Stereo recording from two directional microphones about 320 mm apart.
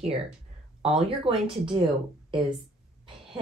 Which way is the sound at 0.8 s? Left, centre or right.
Centre.